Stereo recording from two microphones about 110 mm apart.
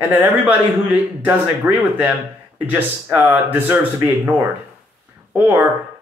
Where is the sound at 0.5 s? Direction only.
15° right (ahead or behind).